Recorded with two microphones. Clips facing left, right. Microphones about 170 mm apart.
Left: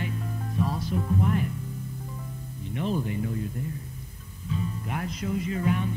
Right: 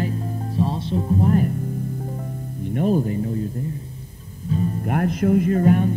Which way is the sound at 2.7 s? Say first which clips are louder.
Right 8 dB; 45° right (ahead or behind).